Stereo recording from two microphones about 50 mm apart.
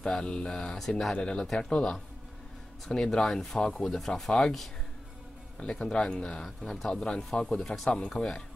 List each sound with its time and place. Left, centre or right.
0.0 s speech: centre
0.7 s speech: centre
1.1 s speech: centre
5.6 s speech: centre
7.9 s speech: centre